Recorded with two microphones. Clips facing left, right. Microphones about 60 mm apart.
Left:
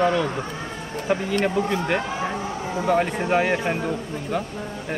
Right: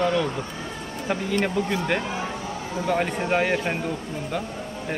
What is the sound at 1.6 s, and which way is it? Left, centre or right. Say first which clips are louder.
Speech: left 2 dB; left.